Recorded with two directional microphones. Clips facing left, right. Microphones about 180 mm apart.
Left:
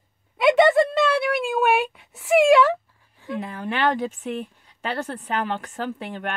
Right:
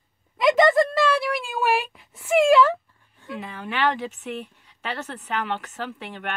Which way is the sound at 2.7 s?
Centre (ahead or behind).